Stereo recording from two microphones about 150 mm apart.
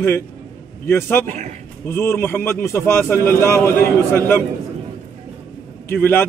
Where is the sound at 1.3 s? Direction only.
55° right (ahead or behind).